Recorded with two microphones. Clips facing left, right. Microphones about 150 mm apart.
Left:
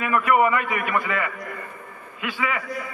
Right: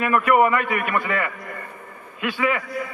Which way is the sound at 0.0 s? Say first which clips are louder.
Right 2 dB; 55° right (ahead or behind).